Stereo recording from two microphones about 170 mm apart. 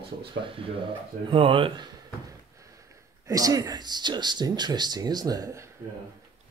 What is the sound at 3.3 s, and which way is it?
Speech, 20° right (ahead or behind).